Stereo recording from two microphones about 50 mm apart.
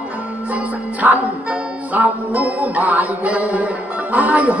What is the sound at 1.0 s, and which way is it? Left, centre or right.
Speech, right.